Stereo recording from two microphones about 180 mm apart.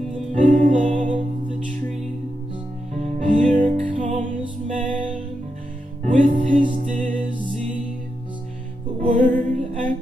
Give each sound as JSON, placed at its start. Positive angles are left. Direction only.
{"t": 0.3, "sound": "music", "side_deg": -45}
{"t": 2.9, "sound": "music", "side_deg": -45}
{"t": 6.0, "sound": "music", "side_deg": -45}
{"t": 9.0, "sound": "music", "side_deg": -45}